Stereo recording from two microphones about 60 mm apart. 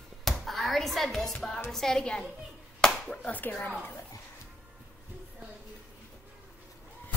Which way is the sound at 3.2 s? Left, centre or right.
Left.